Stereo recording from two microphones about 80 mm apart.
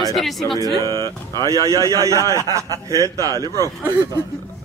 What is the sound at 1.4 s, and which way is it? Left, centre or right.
A man's voice, right.